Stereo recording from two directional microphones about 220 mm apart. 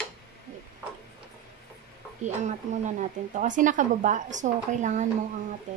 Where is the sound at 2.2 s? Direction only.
35° right (ahead or behind).